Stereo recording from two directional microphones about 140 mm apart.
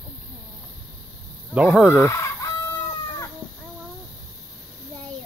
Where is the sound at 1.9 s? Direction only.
20° left (ahead or behind).